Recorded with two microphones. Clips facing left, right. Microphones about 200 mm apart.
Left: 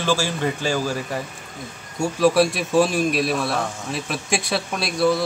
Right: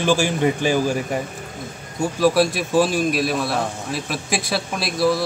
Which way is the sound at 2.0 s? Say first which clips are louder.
Even; centre (ahead or behind).